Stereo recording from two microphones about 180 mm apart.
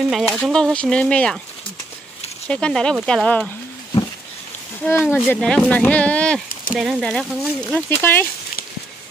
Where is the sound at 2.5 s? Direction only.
5° left (ahead or behind).